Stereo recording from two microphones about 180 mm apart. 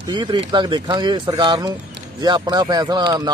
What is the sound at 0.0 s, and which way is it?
Speech, 25° right (ahead or behind).